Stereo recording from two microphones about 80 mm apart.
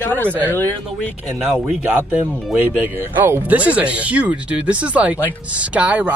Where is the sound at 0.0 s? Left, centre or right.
Left.